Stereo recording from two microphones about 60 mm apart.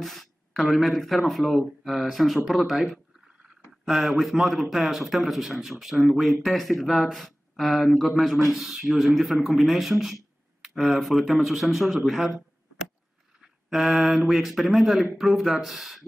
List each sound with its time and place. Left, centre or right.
0.0 s speech: centre
13.7 s speech: centre